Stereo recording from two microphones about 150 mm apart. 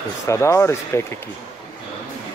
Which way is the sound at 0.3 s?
20° left (ahead or behind).